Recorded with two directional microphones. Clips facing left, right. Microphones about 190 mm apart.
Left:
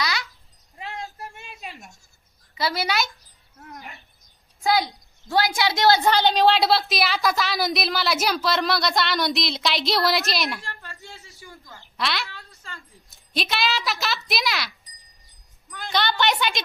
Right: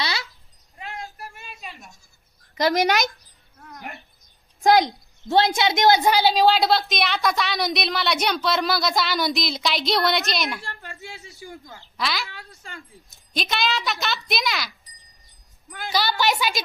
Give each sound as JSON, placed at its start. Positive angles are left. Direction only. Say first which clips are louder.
{"t": 0.7, "sound": "a sound", "louder": "left 1 dB", "side_deg": 20}
{"t": 2.5, "sound": "speech", "louder": "right 6 dB", "side_deg": -45}
{"t": 5.3, "sound": "a woman's voice", "louder": "right 3 dB", "side_deg": -25}
{"t": 10.6, "sound": "speech", "louder": "right 2 dB", "side_deg": -15}
{"t": 12.0, "sound": "a woman's voice", "louder": "even", "side_deg": 0}
{"t": 12.3, "sound": "a woman's voice", "louder": "right 1 dB", "side_deg": -15}
{"t": 13.3, "sound": "a woman's voice", "louder": "even", "side_deg": 0}
{"t": 15.8, "sound": "a woman's voice", "louder": "even", "side_deg": -5}